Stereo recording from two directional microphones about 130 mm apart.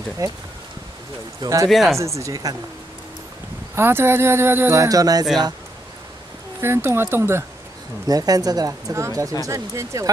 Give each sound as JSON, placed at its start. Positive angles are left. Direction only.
{"t": 0.2, "sound": "speech", "side_deg": -25}
{"t": 1.4, "sound": "speech", "side_deg": -25}
{"t": 1.7, "sound": "speech", "side_deg": 0}
{"t": 2.0, "sound": "speech", "side_deg": -25}
{"t": 3.7, "sound": "speech", "side_deg": -20}
{"t": 6.6, "sound": "speech", "side_deg": -20}